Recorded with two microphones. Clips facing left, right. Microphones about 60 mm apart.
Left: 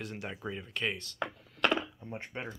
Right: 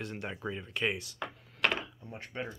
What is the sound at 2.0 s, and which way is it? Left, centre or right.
Speech, left.